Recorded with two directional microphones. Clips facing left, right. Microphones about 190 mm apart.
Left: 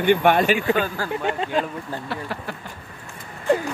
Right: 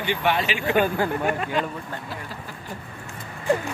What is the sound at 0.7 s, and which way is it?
Speech, 20° right (ahead or behind).